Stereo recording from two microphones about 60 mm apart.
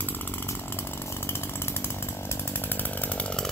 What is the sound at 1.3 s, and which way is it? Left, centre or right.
Chainsaw, left.